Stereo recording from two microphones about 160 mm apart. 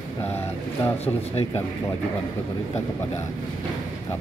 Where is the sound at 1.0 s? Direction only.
40° left (ahead or behind).